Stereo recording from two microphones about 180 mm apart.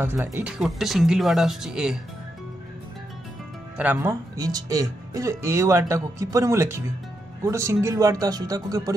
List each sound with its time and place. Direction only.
0.0 s speech: 10° right (ahead or behind)
3.7 s speech: 10° right (ahead or behind)